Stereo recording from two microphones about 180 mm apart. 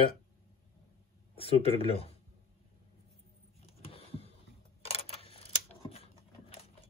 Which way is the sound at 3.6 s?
35° left (ahead or behind).